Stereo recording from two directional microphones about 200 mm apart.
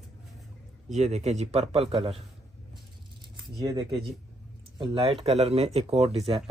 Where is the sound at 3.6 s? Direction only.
15° right (ahead or behind).